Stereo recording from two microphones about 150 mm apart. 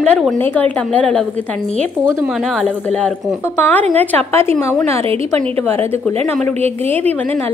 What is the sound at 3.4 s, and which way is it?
A woman's voice, 15° left (ahead or behind).